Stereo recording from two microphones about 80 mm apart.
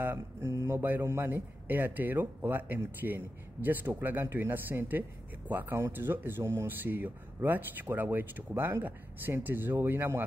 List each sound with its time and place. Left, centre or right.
0.0 s a man's voice: right